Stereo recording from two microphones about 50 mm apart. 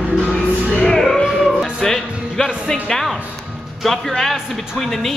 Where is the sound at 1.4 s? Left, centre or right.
Centre.